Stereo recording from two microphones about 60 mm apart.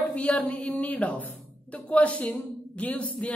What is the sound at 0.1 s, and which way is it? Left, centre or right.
Speech, left.